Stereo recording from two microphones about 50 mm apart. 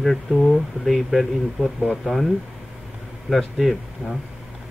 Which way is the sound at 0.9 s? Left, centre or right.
Centre.